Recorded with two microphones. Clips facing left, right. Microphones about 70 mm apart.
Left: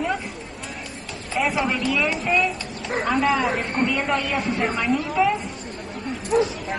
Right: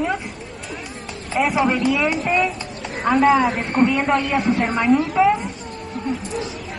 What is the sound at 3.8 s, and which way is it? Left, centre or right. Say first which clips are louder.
Speech: right 7 dB; centre.